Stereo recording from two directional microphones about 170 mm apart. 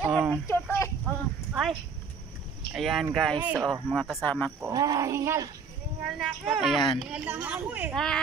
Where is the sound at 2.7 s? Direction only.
Centre (ahead or behind).